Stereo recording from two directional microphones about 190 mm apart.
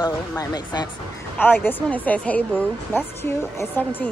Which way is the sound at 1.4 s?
10° left (ahead or behind).